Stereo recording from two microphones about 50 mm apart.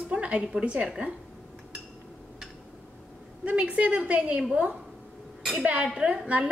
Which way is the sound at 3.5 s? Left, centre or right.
Right.